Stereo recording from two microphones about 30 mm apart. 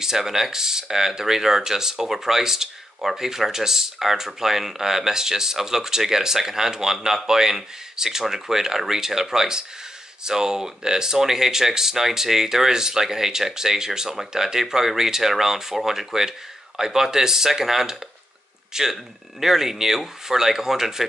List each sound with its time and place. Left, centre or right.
0.0 s speech: centre